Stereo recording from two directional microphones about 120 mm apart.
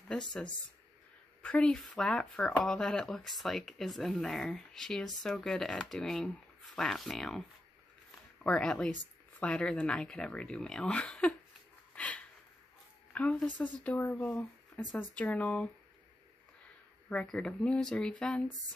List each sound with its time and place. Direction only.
1.4 s speech: 10° left (ahead or behind)
8.5 s speech: 10° left (ahead or behind)
11.9 s a sound: 10° left (ahead or behind)
13.1 s a woman's voice: 10° left (ahead or behind)
17.1 s speech: 10° left (ahead or behind)